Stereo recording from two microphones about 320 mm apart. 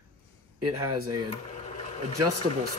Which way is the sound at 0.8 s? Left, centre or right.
Right.